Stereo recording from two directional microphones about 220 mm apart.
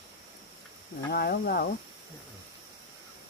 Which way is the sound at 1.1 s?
45° left (ahead or behind).